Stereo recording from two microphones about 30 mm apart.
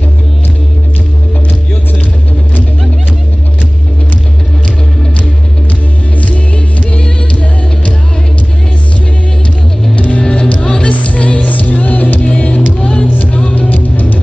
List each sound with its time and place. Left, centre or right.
6.2 s music: left
9.9 s music: left
10.2 s music: left
11.4 s music: left
12.3 s music: left
13.5 s music: left